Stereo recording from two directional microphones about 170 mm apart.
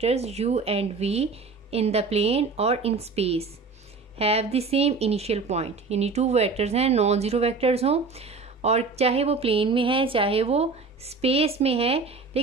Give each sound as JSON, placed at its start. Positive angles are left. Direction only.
{"t": 0.0, "sound": "speech", "side_deg": -40}